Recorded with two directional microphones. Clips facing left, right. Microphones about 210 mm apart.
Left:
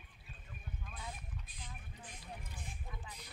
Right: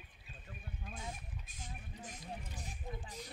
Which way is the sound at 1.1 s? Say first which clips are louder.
Right 1 dB; 45° right (ahead or behind).